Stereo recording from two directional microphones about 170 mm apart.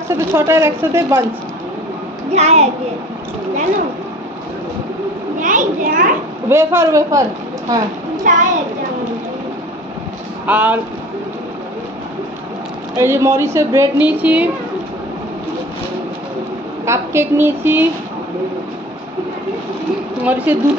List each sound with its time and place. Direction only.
0.1 s a woman's voice: 15° right (ahead or behind)
2.3 s a child's voice: 40° right (ahead or behind)
5.4 s a child's voice: 50° right (ahead or behind)
6.5 s a woman's voice: 15° right (ahead or behind)
8.2 s a child's voice: 45° right (ahead or behind)
10.4 s a woman's voice: 10° right (ahead or behind)
12.9 s a woman's voice: 15° right (ahead or behind)
16.8 s a woman's voice: 15° right (ahead or behind)
20.2 s a woman's voice: 10° right (ahead or behind)